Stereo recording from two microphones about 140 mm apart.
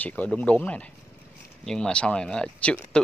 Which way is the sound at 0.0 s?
10° left (ahead or behind).